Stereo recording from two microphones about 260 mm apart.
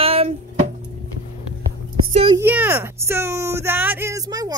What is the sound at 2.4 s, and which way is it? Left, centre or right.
Speech, centre.